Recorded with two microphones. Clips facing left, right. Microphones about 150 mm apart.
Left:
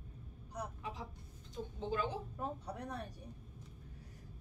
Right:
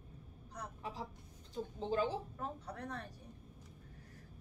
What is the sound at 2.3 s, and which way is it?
Speech, 15° left (ahead or behind).